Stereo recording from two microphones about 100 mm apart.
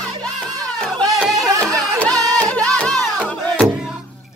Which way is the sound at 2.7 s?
10° left (ahead or behind).